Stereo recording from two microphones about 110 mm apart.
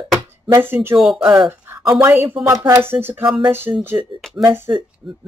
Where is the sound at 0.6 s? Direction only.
20° right (ahead or behind).